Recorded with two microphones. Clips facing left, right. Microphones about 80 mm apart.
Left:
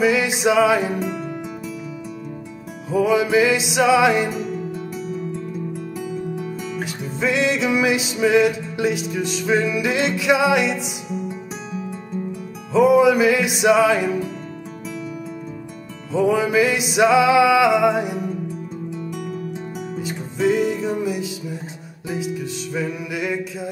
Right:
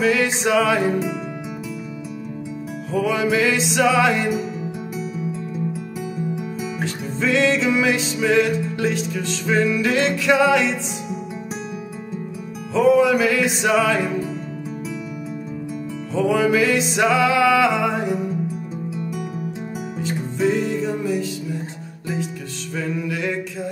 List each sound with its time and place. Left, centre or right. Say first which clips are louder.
0.0 s music: left 1 dB; centre
2.9 s music: left 3 dB; centre
6.8 s music: even; centre
12.7 s music: left 2 dB; centre
16.1 s music: even; centre
20.0 s music: right 1 dB; centre
22.8 s music: right 1 dB; centre